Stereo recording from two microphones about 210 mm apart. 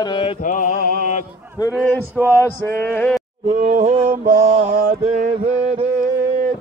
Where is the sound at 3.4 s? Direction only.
35° right (ahead or behind).